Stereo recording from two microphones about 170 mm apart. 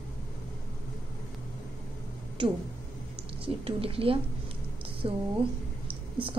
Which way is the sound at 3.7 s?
35° right (ahead or behind).